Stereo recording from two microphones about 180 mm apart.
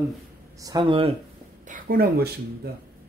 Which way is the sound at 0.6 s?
25° right (ahead or behind).